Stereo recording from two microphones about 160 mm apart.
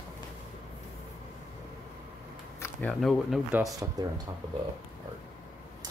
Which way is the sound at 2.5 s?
15° left (ahead or behind).